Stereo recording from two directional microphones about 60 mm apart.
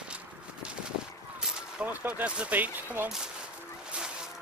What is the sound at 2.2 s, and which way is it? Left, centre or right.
Speech, right.